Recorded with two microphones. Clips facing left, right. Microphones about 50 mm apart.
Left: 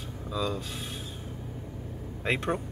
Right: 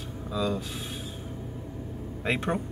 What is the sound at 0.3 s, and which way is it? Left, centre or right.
Speech, centre.